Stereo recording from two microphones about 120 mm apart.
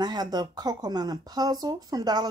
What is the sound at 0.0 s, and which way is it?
Speech, 35° right (ahead or behind).